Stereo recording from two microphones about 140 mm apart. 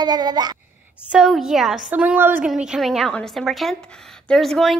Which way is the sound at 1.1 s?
Centre (ahead or behind).